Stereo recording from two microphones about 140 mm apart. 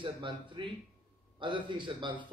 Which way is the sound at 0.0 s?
35° right (ahead or behind).